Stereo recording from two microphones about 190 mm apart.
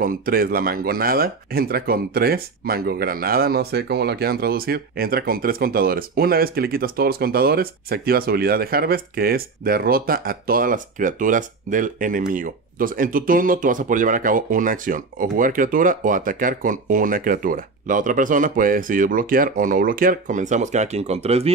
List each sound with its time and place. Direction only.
0.0 s speech: 50° right (ahead or behind); by 21.5 s 35° right (ahead or behind)